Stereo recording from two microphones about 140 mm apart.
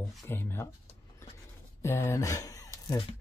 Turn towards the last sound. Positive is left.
turn(degrees=25)  # may be behind; listen again after turning